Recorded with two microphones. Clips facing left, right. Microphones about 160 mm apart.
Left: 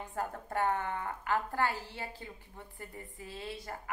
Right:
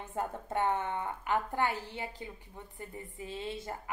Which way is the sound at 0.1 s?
20° right (ahead or behind).